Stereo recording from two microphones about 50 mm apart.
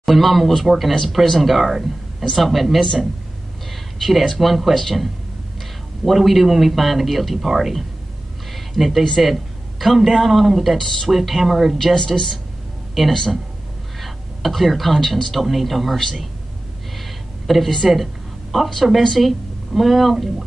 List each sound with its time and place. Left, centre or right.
0.0 s a man's voice: centre
4.0 s a man's voice: centre
11.9 s a woman's voice: centre
13.9 s a sound: centre
15.4 s a man's voice: centre
16.9 s a sound: centre
18.8 s a man's voice: centre